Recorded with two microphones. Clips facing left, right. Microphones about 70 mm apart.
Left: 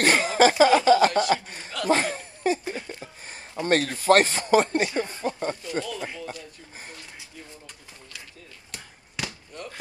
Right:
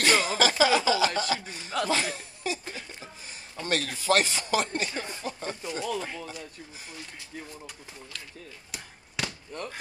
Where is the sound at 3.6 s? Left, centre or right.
Left.